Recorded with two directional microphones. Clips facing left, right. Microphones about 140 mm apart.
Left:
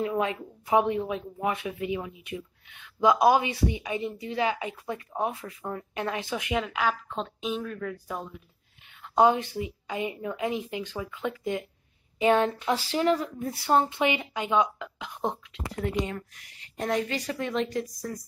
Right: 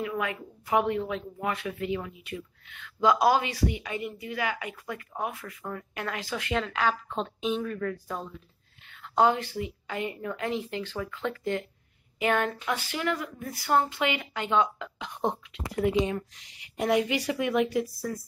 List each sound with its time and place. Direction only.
0.0 s speech: 30° left (ahead or behind); by 15.3 s 5° left (ahead or behind)
16.1 s speech: 20° right (ahead or behind)